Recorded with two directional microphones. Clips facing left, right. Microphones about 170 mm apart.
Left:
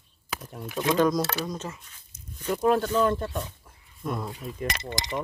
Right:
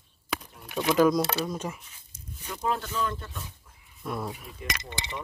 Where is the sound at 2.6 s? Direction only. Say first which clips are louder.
Left 7 dB; 55° left (ahead or behind).